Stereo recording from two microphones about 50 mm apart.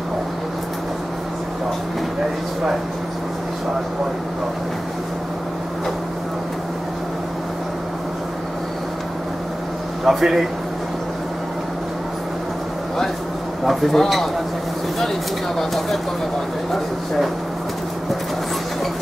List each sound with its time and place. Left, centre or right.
10.0 s speech: centre
13.7 s speech: centre